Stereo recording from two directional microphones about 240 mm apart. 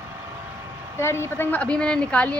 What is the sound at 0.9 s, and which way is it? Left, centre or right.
Speech, centre.